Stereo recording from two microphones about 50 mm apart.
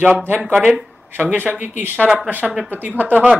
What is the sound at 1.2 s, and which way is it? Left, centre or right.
Speech, right.